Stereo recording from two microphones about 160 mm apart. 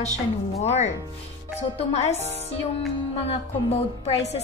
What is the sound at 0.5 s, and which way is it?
Speech, 45° left (ahead or behind).